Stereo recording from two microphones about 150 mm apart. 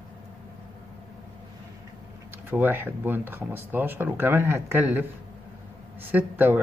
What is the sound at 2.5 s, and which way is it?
Speech, 10° right (ahead or behind).